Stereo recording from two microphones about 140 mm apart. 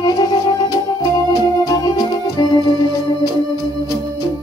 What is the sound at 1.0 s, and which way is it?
Organ, 25° left (ahead or behind).